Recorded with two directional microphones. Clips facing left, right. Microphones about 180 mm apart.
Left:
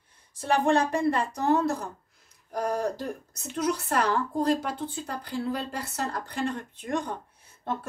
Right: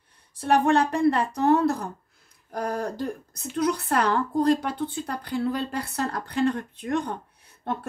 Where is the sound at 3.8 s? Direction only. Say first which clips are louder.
Right 2 dB; 60° right (ahead or behind).